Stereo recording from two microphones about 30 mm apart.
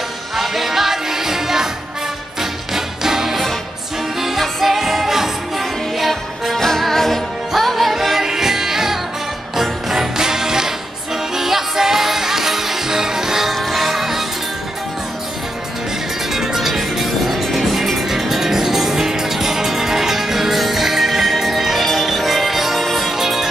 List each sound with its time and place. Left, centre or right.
0.4 s music: centre
2.7 s music: centre
6.5 s music: centre
13.7 s music: centre
16.3 s music: centre
23.0 s music: centre